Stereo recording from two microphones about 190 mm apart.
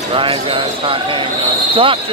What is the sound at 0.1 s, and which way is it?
Speech, 30° right (ahead or behind).